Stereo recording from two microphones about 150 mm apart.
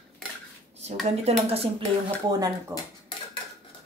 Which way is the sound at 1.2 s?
45° right (ahead or behind).